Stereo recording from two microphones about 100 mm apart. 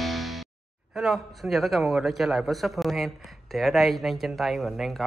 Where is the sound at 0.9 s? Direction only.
Centre (ahead or behind).